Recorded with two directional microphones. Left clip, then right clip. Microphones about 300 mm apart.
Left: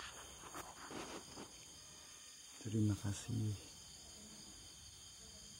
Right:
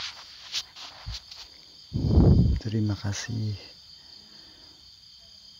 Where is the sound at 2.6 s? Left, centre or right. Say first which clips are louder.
Right 10 dB; centre.